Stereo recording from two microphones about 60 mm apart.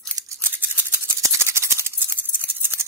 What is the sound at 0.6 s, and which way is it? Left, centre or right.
Scissors, right.